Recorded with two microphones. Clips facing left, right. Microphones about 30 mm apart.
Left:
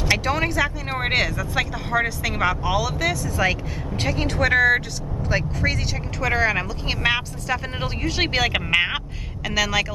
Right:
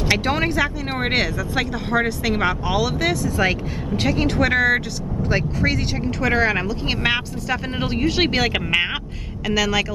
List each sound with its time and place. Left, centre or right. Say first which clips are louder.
0.2 s speech: right 2 dB; centre
0.6 s speech: right 1 dB; centre